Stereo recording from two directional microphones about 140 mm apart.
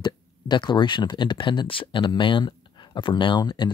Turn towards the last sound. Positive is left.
turn(degrees=35)  # may be behind; listen again after turning